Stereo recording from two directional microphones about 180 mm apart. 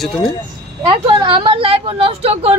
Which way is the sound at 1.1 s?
30° right (ahead or behind).